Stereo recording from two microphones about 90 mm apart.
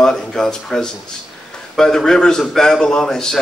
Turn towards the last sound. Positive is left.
turn(degrees=5)  # may be behind; listen again after turning